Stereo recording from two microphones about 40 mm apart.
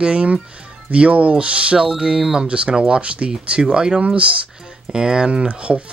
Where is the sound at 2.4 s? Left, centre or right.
Right.